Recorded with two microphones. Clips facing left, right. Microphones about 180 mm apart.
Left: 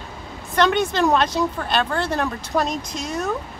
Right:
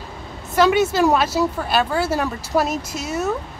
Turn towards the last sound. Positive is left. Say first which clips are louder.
# right 2 dB
turn(degrees=-5)  # may be behind; listen again after turning